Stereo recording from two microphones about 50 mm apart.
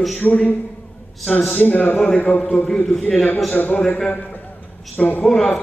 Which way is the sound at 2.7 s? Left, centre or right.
Centre.